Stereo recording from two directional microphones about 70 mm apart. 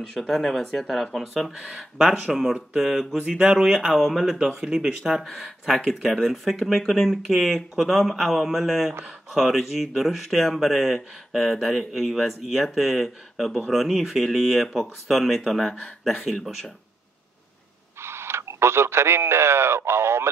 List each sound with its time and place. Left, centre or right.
0.3 s speech: centre
18.0 s speech: right